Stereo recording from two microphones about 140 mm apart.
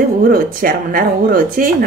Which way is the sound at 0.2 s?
90° right.